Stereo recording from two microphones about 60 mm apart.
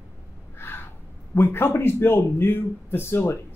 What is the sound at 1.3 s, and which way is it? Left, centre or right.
A man's voice, left.